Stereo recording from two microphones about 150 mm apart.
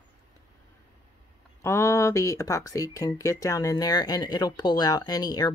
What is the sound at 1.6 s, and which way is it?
Speech, 20° left (ahead or behind).